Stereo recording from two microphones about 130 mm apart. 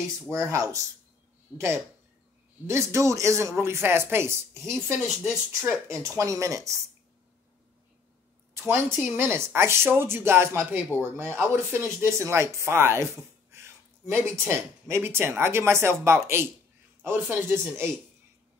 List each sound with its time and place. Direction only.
0.3 s speech: 20° right (ahead or behind)
2.6 s speech: 20° right (ahead or behind)
8.5 s speech: 15° right (ahead or behind)